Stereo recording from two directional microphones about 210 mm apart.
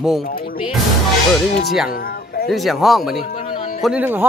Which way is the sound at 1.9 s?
45° left (ahead or behind).